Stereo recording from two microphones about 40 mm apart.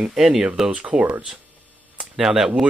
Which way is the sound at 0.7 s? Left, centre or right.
Right.